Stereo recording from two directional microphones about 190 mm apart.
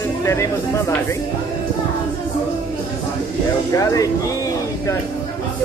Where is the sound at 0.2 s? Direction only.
15° left (ahead or behind).